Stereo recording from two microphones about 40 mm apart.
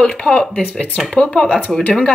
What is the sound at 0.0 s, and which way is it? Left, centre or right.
Speech, left.